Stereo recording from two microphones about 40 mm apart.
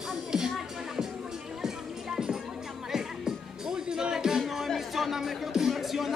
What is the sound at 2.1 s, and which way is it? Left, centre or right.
Music, centre.